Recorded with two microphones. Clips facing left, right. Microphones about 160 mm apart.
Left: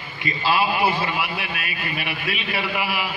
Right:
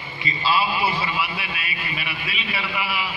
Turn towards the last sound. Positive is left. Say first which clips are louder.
# left 2 dB
turn(degrees=50)  # may be behind; listen again after turning